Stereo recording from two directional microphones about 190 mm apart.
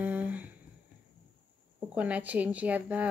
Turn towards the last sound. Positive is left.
turn(degrees=-10)  # may be behind; listen again after turning